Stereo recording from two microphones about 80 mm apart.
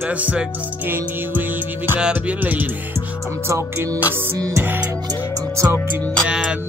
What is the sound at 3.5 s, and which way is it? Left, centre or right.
Music, right.